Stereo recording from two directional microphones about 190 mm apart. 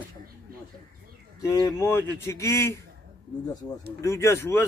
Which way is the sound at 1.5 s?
15° left (ahead or behind).